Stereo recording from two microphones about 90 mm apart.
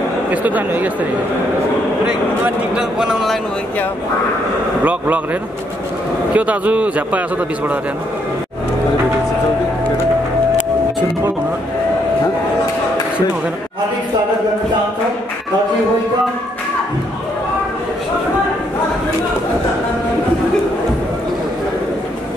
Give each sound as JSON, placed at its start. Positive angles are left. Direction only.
{"t": 0.3, "sound": "a man's voice", "side_deg": -15}
{"t": 2.0, "sound": "a man's voice", "side_deg": -10}
{"t": 4.8, "sound": "a man's voice", "side_deg": -15}
{"t": 6.3, "sound": "a man's voice", "side_deg": -15}